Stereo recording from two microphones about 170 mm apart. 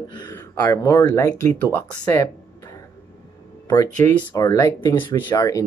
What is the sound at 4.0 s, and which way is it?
Speech, 15° left (ahead or behind).